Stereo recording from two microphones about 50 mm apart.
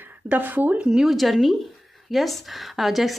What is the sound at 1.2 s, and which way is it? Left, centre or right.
Speech, centre.